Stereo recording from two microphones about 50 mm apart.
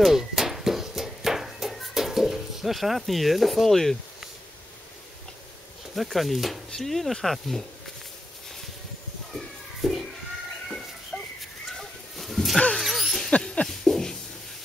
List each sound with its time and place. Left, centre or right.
0.0 s a sound: centre
5.9 s speech: centre
9.3 s children playing: centre
11.1 s dog: centre
12.2 s dog: centre
12.7 s a sound: centre